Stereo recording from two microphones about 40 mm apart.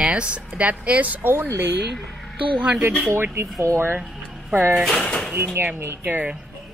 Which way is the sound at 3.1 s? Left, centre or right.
Right.